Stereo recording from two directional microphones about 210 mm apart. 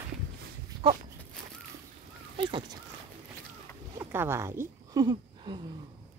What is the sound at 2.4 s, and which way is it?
Speech, 25° right (ahead or behind).